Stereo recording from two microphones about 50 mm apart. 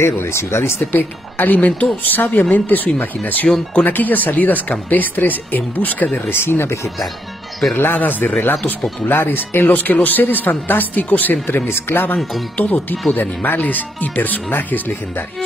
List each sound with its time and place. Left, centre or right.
0.0 s speech: left
0.7 s speech: left
3.5 s speech: centre
3.8 s speech: left
6.3 s speech: left
7.7 s speech: left
9.7 s speech: left
12.2 s speech: centre
12.5 s speech: left